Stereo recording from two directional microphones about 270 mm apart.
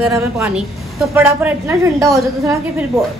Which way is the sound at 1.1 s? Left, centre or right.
Centre.